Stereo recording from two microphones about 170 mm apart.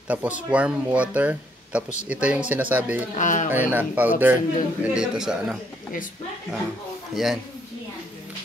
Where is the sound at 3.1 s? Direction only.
50° left (ahead or behind).